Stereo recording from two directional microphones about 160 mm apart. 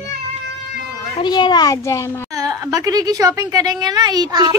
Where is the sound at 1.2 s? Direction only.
25° left (ahead or behind).